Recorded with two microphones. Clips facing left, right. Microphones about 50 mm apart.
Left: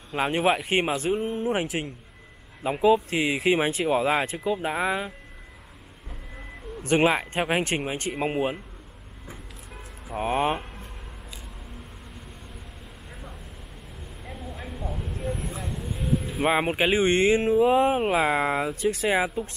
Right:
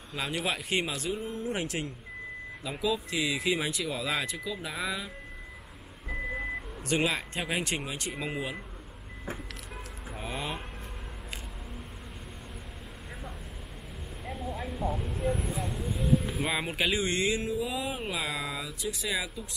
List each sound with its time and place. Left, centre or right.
0.1 s speech: left
6.8 s speech: left
10.1 s speech: left
14.2 s vehicle: centre
16.4 s speech: left